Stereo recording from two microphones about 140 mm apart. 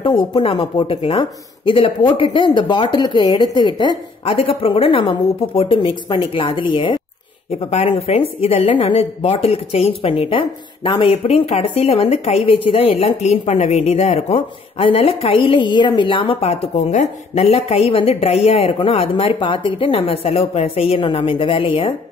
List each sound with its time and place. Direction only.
0.0 s speech: 35° left (ahead or behind)